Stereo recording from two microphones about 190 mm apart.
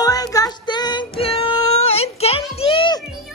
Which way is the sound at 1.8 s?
30° left (ahead or behind).